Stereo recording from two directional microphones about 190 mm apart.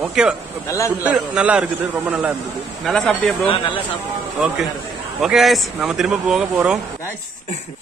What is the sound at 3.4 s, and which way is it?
Speech, 30° left (ahead or behind).